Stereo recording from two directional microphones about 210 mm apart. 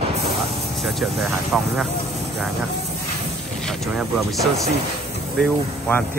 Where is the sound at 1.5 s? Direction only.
5° right (ahead or behind).